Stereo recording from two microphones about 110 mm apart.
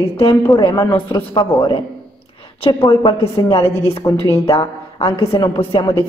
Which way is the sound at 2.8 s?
50° left (ahead or behind).